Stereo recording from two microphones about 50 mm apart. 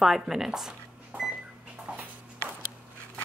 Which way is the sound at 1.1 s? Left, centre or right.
Right.